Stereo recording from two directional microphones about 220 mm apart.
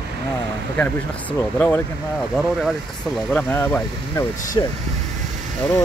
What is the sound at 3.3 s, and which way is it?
Speech, 5° left (ahead or behind).